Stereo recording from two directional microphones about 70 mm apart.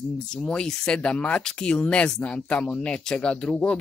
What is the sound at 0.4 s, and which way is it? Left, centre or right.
Speech, centre.